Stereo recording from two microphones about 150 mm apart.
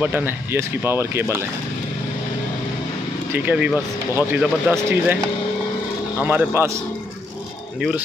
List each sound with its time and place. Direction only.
0.0 s speech: 15° right (ahead or behind)
3.3 s speech: 10° right (ahead or behind)
6.2 s speech: 10° right (ahead or behind)